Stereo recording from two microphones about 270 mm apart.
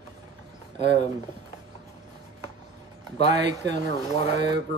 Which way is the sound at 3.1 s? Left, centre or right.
Right.